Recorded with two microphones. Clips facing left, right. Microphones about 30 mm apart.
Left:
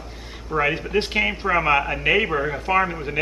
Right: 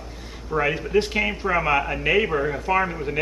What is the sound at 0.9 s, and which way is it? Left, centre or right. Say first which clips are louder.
Speech: right 4 dB; left.